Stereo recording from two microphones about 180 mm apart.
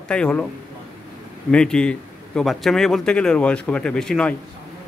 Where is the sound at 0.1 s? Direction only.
5° left (ahead or behind).